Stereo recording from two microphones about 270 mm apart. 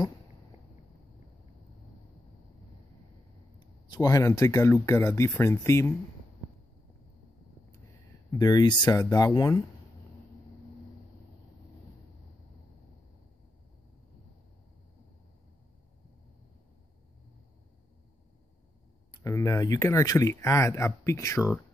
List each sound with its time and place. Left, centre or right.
3.5 s speech: centre
8.3 s speech: centre
19.1 s speech: centre